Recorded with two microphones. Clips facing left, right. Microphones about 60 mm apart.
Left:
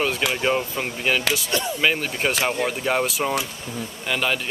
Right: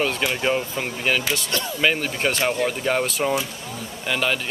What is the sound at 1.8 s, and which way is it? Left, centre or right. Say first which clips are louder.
Speech: right 2 dB; centre.